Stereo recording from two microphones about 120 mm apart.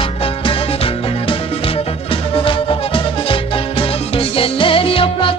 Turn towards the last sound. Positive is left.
turn(degrees=50)  # may be behind; listen again after turning